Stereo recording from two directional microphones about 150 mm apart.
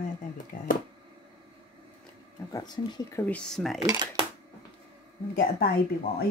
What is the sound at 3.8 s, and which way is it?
Speech, 25° right (ahead or behind).